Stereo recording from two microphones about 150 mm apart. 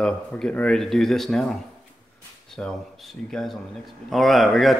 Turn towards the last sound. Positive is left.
turn(degrees=0)  # may be behind; listen again after turning